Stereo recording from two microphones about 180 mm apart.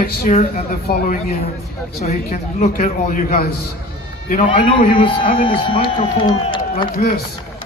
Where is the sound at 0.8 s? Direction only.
55° left (ahead or behind).